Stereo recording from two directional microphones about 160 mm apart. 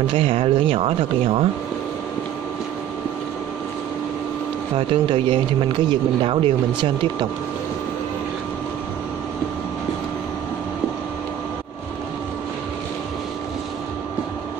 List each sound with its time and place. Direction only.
0.0 s speech: 35° right (ahead or behind)
4.7 s speech: 30° right (ahead or behind)